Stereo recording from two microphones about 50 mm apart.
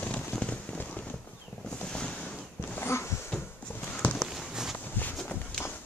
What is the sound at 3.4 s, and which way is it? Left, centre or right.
Horse, left.